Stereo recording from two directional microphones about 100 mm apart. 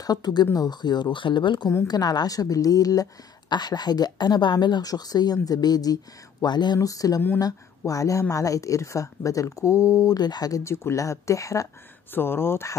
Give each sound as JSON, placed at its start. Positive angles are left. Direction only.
{"t": 0.0, "sound": "speech", "side_deg": 40}
{"t": 1.9, "sound": "speech", "side_deg": 40}
{"t": 12.1, "sound": "speech", "side_deg": 20}